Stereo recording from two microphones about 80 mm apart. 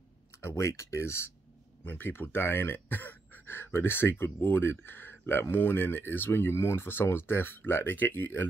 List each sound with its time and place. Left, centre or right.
0.4 s speech: left